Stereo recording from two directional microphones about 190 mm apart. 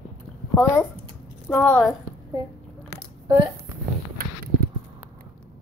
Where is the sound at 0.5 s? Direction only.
15° left (ahead or behind).